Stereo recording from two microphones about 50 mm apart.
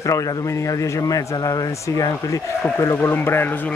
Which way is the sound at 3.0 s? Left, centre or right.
Left.